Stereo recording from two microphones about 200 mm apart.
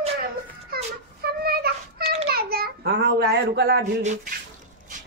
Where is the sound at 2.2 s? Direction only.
50° right (ahead or behind).